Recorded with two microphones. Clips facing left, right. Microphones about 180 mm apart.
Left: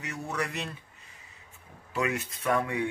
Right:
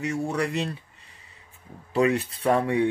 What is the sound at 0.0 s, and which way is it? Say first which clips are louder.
Speech: right 7 dB; 30° right (ahead or behind).